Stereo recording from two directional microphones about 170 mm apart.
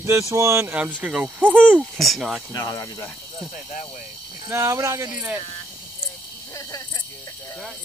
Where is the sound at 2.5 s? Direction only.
20° left (ahead or behind).